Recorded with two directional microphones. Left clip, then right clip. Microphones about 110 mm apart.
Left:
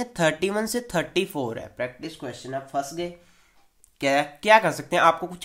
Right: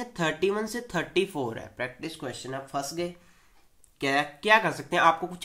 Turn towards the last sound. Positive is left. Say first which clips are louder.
# left 3 dB
turn(degrees=45)  # may be behind; listen again after turning